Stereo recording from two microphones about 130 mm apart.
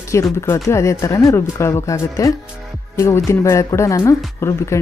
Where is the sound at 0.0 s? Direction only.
20° left (ahead or behind).